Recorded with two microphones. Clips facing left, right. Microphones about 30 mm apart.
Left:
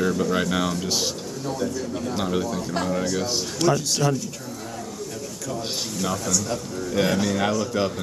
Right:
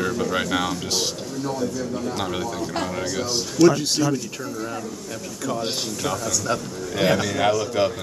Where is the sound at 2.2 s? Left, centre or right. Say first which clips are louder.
Left 1 dB; centre.